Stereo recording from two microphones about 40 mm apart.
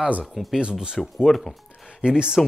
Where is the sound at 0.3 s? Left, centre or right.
Centre.